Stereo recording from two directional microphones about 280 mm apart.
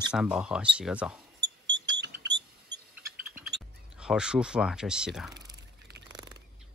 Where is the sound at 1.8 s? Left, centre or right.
Centre.